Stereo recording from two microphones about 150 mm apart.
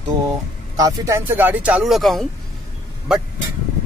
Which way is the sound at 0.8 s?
20° right (ahead or behind).